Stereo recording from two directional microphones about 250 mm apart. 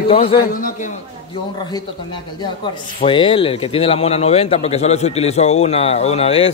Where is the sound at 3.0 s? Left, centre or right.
Left.